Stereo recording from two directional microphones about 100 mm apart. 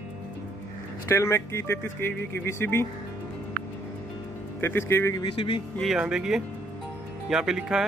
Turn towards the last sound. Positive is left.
turn(degrees=-5)  # may be behind; listen again after turning